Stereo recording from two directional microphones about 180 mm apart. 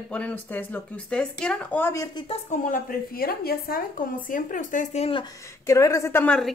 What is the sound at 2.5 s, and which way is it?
A woman's voice, 45° left (ahead or behind).